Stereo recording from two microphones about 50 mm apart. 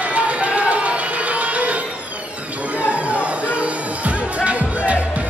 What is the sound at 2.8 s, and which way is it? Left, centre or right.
Music, right.